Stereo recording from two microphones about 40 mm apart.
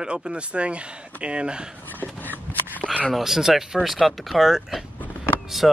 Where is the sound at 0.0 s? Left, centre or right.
Right.